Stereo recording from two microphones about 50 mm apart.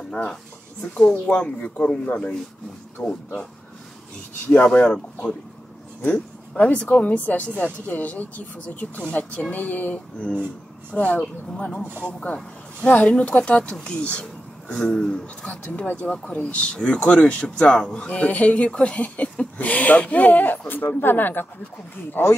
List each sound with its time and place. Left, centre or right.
0.1 s speech: centre
4.7 s speech: left
7.2 s speech: left
17.7 s speech: centre
18.0 s speech: left